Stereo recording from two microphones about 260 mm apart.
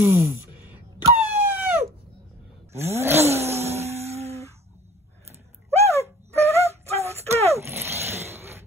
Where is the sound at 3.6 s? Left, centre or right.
Right.